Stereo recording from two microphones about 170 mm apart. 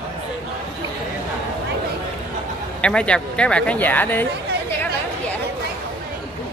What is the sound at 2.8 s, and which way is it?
Speech, 5° left (ahead or behind).